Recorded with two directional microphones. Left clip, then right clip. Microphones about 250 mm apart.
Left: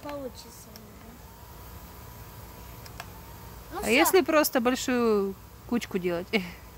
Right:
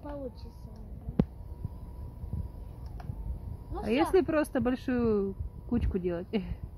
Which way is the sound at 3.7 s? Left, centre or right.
Centre.